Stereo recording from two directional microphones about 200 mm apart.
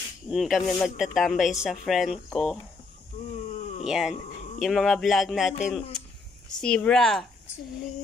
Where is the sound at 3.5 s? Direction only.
35° left (ahead or behind).